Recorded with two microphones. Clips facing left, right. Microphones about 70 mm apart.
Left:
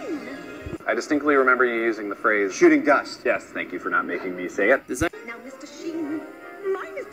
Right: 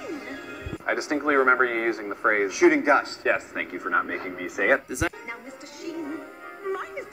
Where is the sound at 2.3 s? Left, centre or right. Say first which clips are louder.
Left 3 dB; centre.